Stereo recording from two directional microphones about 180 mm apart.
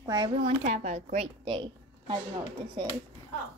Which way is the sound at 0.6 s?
40° right (ahead or behind).